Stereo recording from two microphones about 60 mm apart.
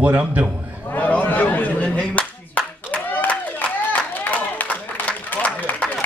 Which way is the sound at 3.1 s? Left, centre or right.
Left.